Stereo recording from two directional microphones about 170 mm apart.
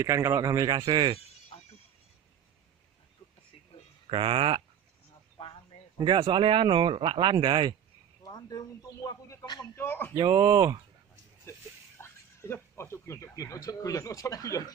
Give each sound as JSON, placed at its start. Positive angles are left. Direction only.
{"t": 0.0, "sound": "speech", "side_deg": -20}
{"t": 4.1, "sound": "speech", "side_deg": -30}
{"t": 5.4, "sound": "a sound", "side_deg": 30}
{"t": 5.9, "sound": "speech", "side_deg": -30}
{"t": 8.2, "sound": "speech", "side_deg": 20}
{"t": 10.1, "sound": "speech", "side_deg": -25}
{"t": 12.0, "sound": "speech", "side_deg": 15}